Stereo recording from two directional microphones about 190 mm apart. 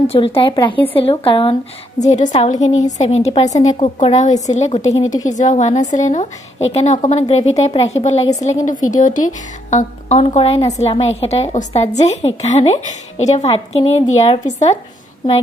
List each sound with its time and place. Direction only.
0.0 s a woman's voice: 30° left (ahead or behind)